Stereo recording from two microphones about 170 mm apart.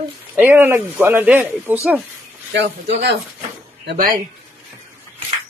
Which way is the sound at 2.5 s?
90° right.